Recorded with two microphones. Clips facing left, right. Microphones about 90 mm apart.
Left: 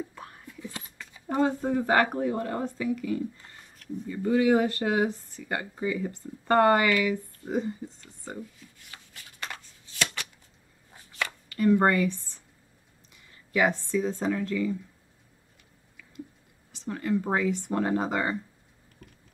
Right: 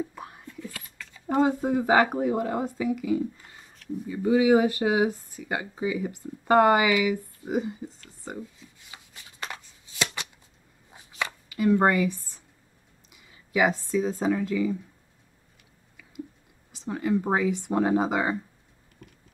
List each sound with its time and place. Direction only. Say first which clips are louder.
0.0 s whispering: right 4 dB; 10° right (ahead or behind)
0.6 s a sound: even; 20° left (ahead or behind)
1.2 s speech: right 3 dB; 10° right (ahead or behind)
3.7 s a sound: right 2 dB; centre (ahead or behind)
4.1 s speech: right 3 dB; 10° right (ahead or behind)
8.4 s shuffling cards: right 1 dB; 20° right (ahead or behind)
10.9 s a sound: right 1 dB; 15° right (ahead or behind)
11.4 s speech: right 1 dB; 10° right (ahead or behind)
16.7 s speech: right 2 dB; 15° right (ahead or behind)